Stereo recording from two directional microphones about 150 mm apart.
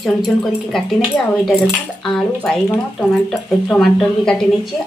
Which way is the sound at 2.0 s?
5° left (ahead or behind).